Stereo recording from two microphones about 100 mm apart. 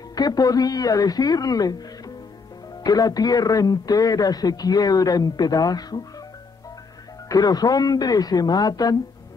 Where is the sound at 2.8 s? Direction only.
40° left (ahead or behind).